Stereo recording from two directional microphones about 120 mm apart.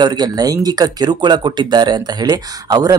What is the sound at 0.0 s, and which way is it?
Speech, 35° right (ahead or behind).